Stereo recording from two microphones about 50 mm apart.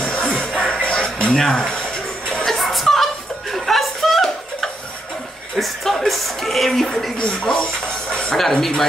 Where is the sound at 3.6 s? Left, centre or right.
Centre.